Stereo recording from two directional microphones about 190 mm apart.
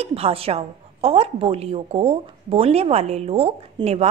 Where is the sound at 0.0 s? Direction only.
30° right (ahead or behind).